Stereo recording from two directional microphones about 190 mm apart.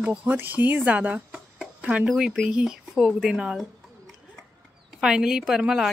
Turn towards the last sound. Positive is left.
turn(degrees=0)  # may be behind; listen again after turning